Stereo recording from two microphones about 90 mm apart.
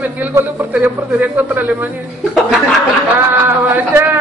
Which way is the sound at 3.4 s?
25° right (ahead or behind).